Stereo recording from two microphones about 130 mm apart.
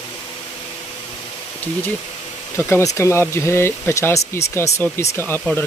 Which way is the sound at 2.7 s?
20° left (ahead or behind).